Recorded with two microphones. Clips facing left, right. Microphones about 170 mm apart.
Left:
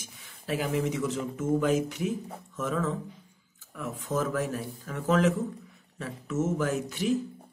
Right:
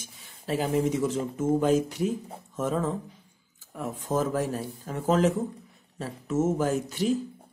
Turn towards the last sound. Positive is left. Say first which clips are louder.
# right 3 dB
turn(degrees=-30)  # may be behind; listen again after turning